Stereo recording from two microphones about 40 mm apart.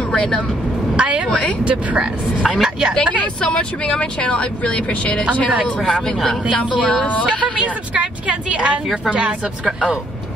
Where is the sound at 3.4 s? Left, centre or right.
Left.